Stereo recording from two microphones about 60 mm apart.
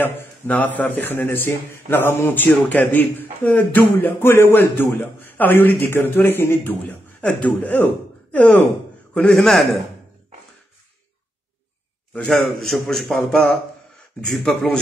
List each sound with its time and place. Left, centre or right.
0.0 s a man's voice: left
9.3 s a man's voice: centre
12.3 s a man's voice: centre